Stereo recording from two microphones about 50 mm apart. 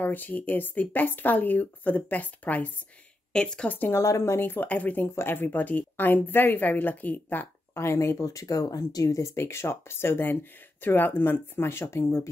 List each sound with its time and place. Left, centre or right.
0.0 s speech: left
3.3 s speech: centre
3.6 s speech: left
3.9 s speech: left
4.6 s speech: left
7.7 s speech: left
9.2 s speech: left